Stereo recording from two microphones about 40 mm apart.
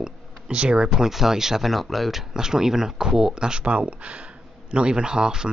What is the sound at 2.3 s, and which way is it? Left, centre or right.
Speech, centre.